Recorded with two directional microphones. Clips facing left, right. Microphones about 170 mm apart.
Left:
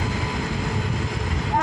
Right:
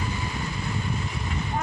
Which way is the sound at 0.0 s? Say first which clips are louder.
Left 4 dB; 90° left.